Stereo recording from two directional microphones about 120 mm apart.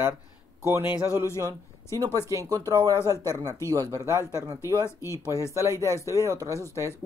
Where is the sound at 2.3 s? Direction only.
25° right (ahead or behind).